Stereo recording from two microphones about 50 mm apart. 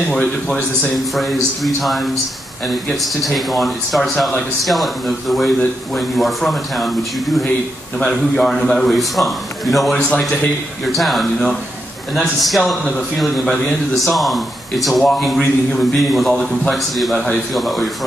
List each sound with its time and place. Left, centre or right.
0.9 s speech: centre
8.4 s speech: centre
9.9 s a man's voice: left
10.9 s speech: centre